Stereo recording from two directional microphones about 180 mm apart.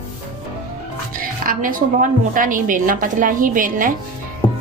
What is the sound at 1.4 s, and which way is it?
A woman's voice, 50° right (ahead or behind).